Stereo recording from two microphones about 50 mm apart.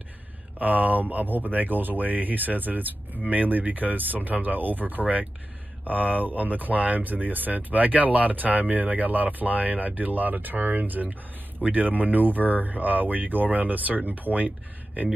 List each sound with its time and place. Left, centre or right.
0.6 s speech: right
5.0 s speech: right
5.9 s speech: right